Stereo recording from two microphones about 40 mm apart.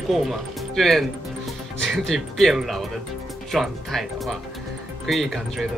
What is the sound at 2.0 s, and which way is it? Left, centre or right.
Speech, centre.